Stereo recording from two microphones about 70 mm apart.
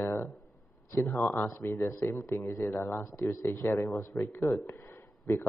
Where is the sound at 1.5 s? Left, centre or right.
Left.